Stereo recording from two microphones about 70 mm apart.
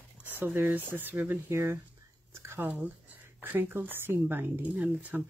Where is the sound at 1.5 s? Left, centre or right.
Right.